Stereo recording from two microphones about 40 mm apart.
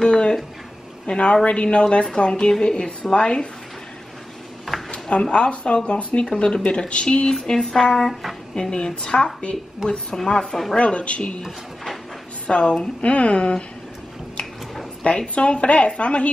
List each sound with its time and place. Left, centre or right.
0.0 s a sound: left
1.0 s a woman's voice: left
4.7 s a sound: centre
5.1 s a woman's voice: left
6.2 s a woman's voice: centre
6.5 s a woman's voice: left
7.4 s a woman's voice: centre
8.1 s speech: centre
8.5 s a woman's voice: centre
10.8 s a woman's voice: left
12.4 s a woman's voice: left
15.0 s a woman's voice: left